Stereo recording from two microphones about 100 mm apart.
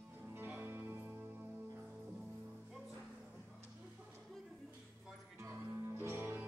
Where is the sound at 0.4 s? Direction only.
20° right (ahead or behind).